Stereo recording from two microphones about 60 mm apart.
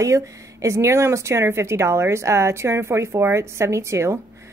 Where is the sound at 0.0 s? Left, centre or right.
Right.